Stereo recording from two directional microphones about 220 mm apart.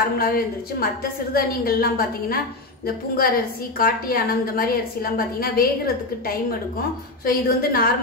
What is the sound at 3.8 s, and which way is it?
A woman's voice, 40° left (ahead or behind).